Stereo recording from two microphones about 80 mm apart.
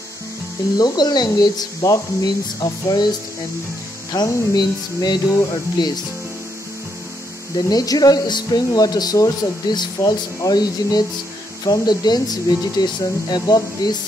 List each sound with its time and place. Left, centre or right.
0.7 s speech: left
4.1 s speech: left
7.5 s speech: left